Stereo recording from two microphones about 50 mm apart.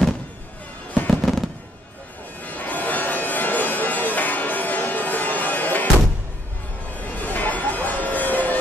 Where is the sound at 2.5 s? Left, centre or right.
Left.